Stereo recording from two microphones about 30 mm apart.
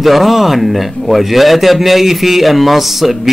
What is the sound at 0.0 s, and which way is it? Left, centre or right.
A man's voice, centre.